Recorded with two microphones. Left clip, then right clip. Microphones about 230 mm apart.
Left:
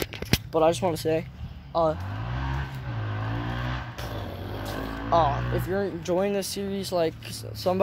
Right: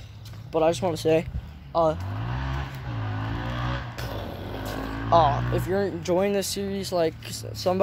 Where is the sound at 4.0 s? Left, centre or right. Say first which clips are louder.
Right 1 dB; centre.